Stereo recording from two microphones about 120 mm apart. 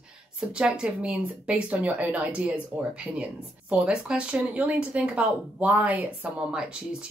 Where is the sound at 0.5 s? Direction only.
5° right (ahead or behind).